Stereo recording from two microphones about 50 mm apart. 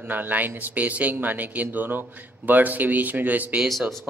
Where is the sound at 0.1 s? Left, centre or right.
Right.